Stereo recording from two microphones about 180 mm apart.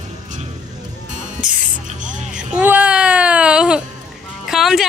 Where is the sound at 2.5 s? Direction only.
10° right (ahead or behind).